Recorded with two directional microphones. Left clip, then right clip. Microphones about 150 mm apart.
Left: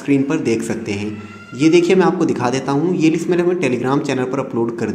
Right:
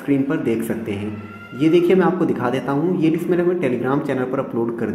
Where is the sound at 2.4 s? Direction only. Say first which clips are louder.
Left 3 dB; 30° left (ahead or behind).